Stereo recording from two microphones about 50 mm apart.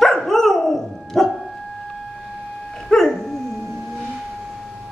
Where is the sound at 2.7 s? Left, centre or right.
Centre.